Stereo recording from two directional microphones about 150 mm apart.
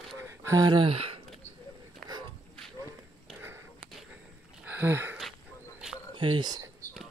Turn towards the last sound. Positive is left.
turn(degrees=-25)  # may be behind; listen again after turning